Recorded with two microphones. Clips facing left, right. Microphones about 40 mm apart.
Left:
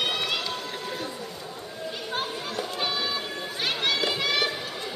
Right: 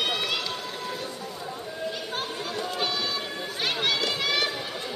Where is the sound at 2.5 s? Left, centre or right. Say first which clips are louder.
Right 2 dB; centre.